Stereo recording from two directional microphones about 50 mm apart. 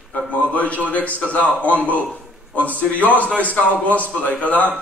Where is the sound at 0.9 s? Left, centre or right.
Left.